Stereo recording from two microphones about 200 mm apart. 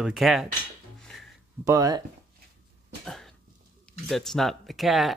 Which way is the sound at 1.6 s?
15° right (ahead or behind).